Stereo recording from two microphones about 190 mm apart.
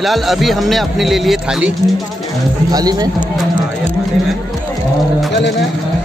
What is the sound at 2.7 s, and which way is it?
Speech, 20° right (ahead or behind).